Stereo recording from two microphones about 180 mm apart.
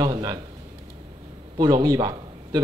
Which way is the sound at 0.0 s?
20° right (ahead or behind).